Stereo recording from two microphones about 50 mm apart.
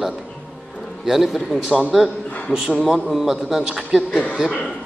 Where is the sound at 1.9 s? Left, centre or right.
Centre.